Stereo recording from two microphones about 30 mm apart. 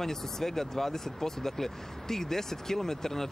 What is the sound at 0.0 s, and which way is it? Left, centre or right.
Speech, centre.